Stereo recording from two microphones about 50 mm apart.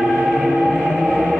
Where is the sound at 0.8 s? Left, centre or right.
Centre.